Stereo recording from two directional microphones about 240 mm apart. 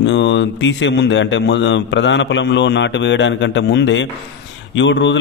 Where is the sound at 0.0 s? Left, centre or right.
Left.